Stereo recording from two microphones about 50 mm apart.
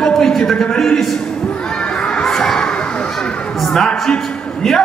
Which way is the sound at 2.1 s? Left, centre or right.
Centre.